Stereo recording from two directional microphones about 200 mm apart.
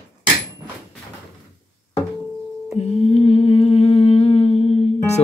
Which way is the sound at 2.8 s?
30° left (ahead or behind).